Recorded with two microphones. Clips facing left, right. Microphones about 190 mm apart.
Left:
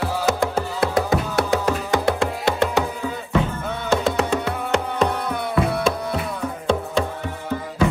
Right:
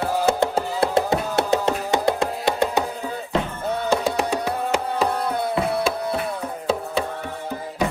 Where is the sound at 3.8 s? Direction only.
15° right (ahead or behind).